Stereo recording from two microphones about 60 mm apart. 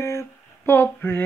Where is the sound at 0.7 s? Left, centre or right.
Left.